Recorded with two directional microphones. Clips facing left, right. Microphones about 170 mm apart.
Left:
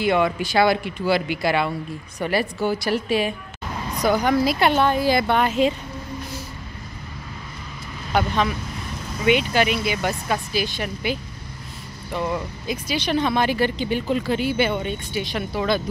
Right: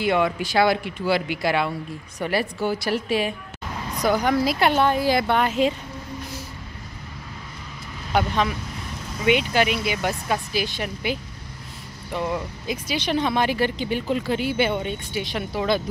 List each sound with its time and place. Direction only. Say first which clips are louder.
0.0 s speech: left 1 dB; centre (ahead or behind)
8.1 s speech: left 1 dB; 10° right (ahead or behind)